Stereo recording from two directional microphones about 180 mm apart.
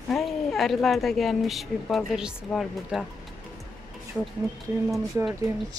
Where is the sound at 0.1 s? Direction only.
Centre (ahead or behind).